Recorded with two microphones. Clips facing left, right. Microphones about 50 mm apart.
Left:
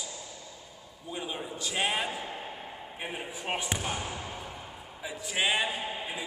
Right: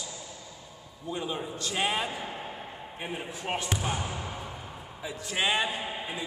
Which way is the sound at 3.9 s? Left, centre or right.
Centre.